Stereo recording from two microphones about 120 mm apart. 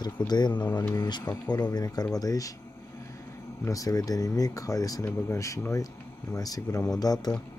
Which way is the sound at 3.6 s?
30° left (ahead or behind).